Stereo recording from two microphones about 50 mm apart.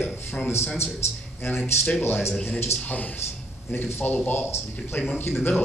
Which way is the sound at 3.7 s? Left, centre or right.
Left.